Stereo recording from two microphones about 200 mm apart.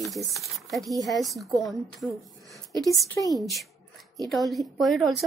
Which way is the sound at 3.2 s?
15° left (ahead or behind).